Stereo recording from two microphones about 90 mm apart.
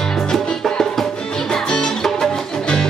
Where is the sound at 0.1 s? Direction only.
5° left (ahead or behind).